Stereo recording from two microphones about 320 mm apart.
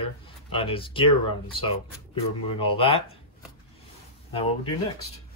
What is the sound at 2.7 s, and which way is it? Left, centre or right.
Speech, centre.